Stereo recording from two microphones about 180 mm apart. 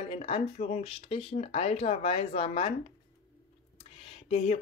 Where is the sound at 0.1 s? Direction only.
35° left (ahead or behind).